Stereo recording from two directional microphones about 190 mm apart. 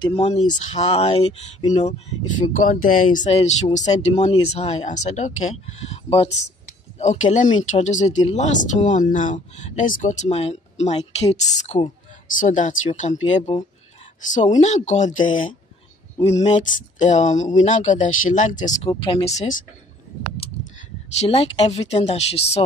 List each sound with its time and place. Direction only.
0.0 s speech: 30° left (ahead or behind)
3.2 s speech: 30° left (ahead or behind)
16.5 s speech: 40° left (ahead or behind)
18.9 s speech: 20° left (ahead or behind)
21.2 s speech: 30° left (ahead or behind)